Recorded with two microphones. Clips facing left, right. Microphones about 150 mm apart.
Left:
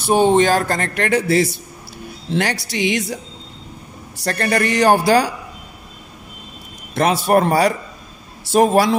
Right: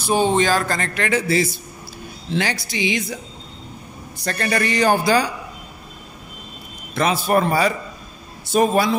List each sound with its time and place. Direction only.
0.1 s speech: 55° left (ahead or behind)
4.3 s speech: 60° left (ahead or behind)
7.0 s speech: 65° left (ahead or behind)